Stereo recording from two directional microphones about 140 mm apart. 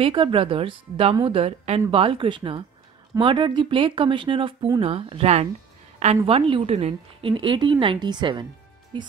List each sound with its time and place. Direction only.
0.0 s a woman's voice: 35° right (ahead or behind)